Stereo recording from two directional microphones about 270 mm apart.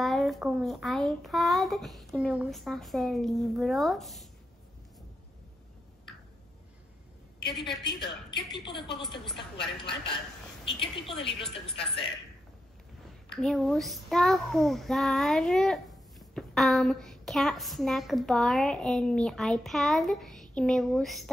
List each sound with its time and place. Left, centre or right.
0.0 s a child's voice: centre
7.8 s a woman's voice: centre
9.2 s a child's voice: centre
11.1 s speech: centre
13.4 s a child's voice: centre